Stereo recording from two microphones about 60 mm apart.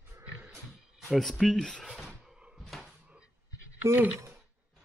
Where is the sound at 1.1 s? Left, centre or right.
Centre.